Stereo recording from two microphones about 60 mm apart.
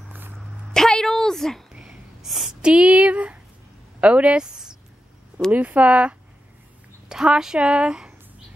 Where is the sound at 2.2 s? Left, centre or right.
Centre.